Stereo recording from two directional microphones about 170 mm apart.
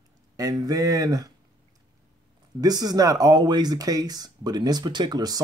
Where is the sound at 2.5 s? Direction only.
20° right (ahead or behind).